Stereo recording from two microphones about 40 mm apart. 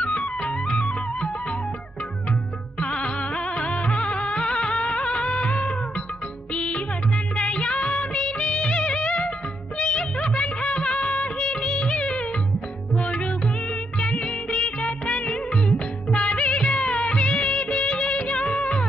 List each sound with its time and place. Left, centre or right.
0.0 s music: left
2.8 s music: left
7.3 s music of bollywood: left
13.0 s music: left
13.9 s music of bollywood: left